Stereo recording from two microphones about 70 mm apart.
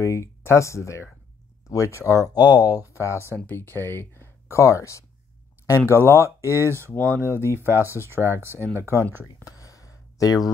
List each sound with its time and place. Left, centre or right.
0.0 s speech: left
2.3 s speech: left
2.9 s speech: left
3.5 s speech: left
5.8 s speech: left
6.4 s speech: right
6.9 s speech: left
7.2 s speech: right
9.4 s a sound: left